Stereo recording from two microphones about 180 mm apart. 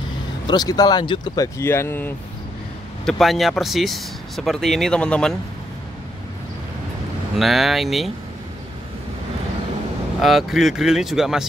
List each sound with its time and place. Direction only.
0.5 s speech: 20° left (ahead or behind)
3.1 s speech: centre (ahead or behind)
7.3 s speech: centre (ahead or behind)
10.2 s speech: centre (ahead or behind)